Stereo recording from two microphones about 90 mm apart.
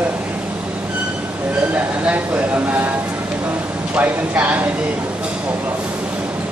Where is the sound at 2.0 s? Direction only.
20° right (ahead or behind).